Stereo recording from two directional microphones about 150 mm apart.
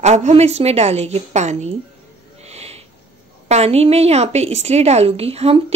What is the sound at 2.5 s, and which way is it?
Owl, 45° right (ahead or behind).